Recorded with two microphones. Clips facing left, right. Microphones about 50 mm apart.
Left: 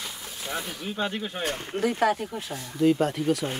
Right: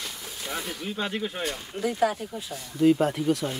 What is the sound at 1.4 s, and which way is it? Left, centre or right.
Speech, left.